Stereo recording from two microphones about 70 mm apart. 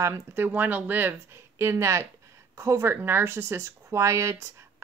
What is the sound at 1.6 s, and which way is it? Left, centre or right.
Speech, right.